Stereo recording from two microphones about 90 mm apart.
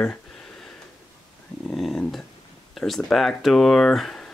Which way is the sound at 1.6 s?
5° left (ahead or behind).